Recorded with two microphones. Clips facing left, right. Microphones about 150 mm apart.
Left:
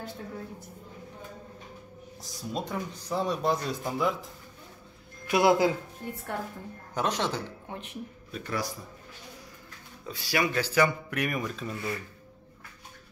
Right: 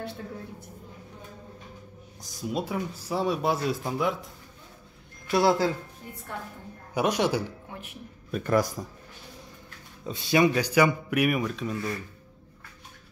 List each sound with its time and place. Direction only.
2.2 s speech: 5° right (ahead or behind)
5.2 s speech: 20° left (ahead or behind)
6.9 s speech: 10° right (ahead or behind)
8.3 s a man's voice: 50° right (ahead or behind)
10.0 s speech: 20° right (ahead or behind); by 11.7 s centre (ahead or behind)